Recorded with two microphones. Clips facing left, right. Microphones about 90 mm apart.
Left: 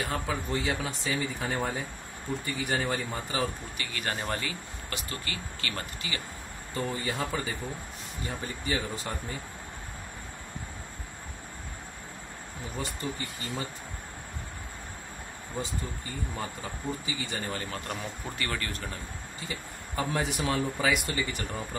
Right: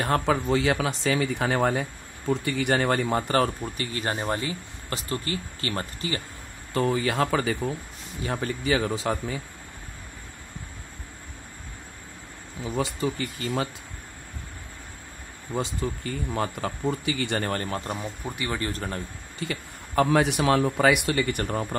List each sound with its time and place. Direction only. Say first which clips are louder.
0.0 s speech: right 8 dB; 65° right (ahead or behind)
3.7 s speech: right 5 dB; 30° right (ahead or behind)
6.7 s speech: right 8 dB; 90° right
8.3 s speech: right 8 dB; 75° right (ahead or behind)
12.7 s speech: right 8 dB; 90° right
15.5 s speech: right 7 dB; 85° right; by 17.6 s 60° right (ahead or behind)
17.6 s speech: right 5 dB; 30° right (ahead or behind)
19.4 s speech: right 8 dB; 70° right (ahead or behind)